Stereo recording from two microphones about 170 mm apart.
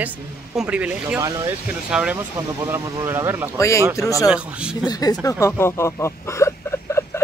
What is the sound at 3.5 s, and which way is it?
Speech, 15° left (ahead or behind).